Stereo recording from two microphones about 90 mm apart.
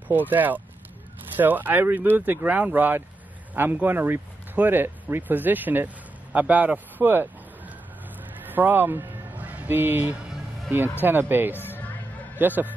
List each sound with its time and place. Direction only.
0.1 s speech: 20° right (ahead or behind)
8.5 s a sound: 20° right (ahead or behind)
10.7 s speech: 25° right (ahead or behind)
11.5 s music: 20° left (ahead or behind)
12.4 s speech: 20° right (ahead or behind)